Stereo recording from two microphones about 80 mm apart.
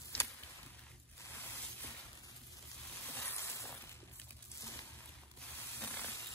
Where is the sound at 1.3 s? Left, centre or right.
Left.